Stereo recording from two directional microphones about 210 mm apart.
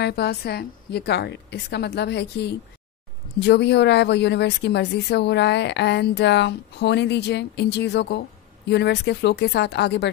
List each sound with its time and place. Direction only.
0.0 s a woman's voice: 50° left (ahead or behind)